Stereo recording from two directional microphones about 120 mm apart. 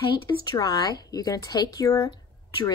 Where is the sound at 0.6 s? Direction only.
35° left (ahead or behind).